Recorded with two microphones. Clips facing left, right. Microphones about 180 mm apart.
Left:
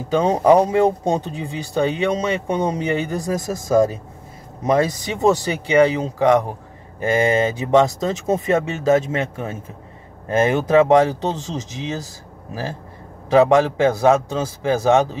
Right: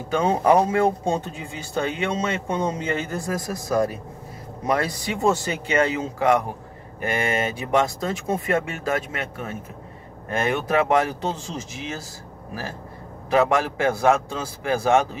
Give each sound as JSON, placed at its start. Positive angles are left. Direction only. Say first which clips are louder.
{"t": 0.1, "sound": "speech", "louder": "left 4 dB", "side_deg": 20}
{"t": 10.7, "sound": "speech", "louder": "left 7 dB", "side_deg": 20}
{"t": 13.4, "sound": "speech", "louder": "left 7 dB", "side_deg": 20}